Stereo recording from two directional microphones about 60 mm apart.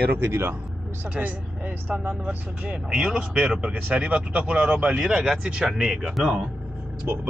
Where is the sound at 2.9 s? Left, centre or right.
Centre.